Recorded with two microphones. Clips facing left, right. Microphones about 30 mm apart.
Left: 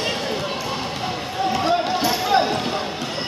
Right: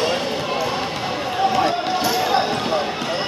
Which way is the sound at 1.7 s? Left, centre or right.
Centre.